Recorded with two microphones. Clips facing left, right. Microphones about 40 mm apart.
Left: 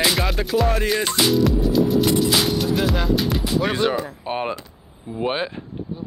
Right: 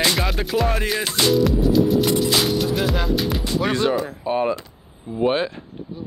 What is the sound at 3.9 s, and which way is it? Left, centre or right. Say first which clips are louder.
Speech: right 3 dB; left.